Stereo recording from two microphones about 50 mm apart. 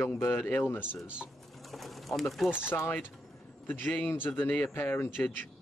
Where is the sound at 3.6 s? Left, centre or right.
Left.